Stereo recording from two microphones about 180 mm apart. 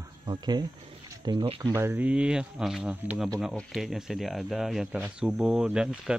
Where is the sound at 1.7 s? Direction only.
15° right (ahead or behind).